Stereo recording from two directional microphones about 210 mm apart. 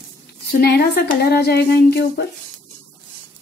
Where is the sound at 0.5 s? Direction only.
50° left (ahead or behind).